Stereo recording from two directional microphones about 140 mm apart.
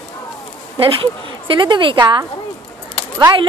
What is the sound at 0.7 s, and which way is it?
Speech, 35° right (ahead or behind).